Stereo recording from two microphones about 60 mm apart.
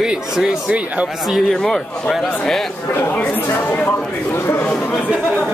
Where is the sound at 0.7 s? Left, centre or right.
Right.